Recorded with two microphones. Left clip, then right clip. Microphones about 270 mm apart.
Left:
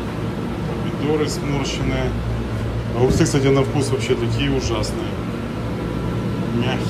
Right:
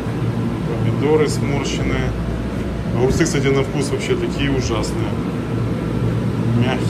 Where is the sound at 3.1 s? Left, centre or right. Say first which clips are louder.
Left 1 dB; centre.